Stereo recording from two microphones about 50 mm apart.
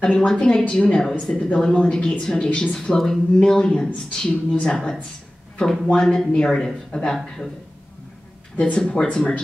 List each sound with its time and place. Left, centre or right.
0.0 s speech: left
8.5 s speech: centre